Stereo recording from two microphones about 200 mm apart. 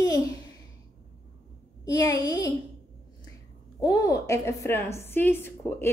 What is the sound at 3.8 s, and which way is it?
Speech, 15° left (ahead or behind).